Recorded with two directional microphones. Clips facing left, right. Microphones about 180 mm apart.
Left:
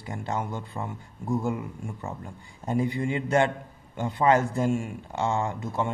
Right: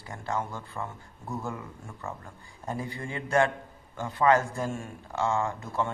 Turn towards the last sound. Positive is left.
turn(degrees=20)  # may be behind; listen again after turning